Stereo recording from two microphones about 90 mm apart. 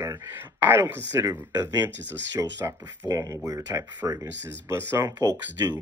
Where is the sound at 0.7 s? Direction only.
25° right (ahead or behind).